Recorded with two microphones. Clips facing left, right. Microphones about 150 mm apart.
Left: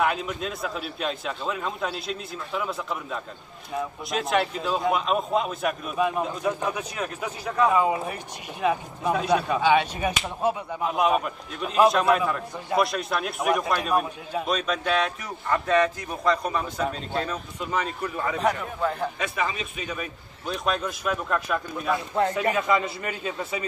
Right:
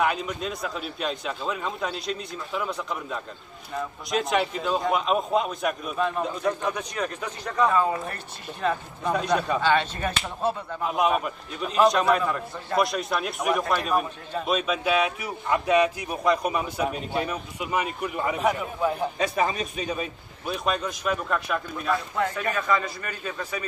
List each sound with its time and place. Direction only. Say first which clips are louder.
0.0 s a man's voice: even; centre (ahead or behind)
10.8 s a man's voice: even; centre (ahead or behind)
19.1 s a man's voice: right 4 dB; 35° right (ahead or behind)
20.4 s a man's voice: even; 5° right (ahead or behind)
22.1 s a man's voice: left 3 dB; 30° left (ahead or behind)